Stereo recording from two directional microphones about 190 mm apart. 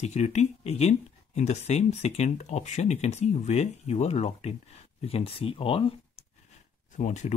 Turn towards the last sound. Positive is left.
turn(degrees=40)  # may be behind; listen again after turning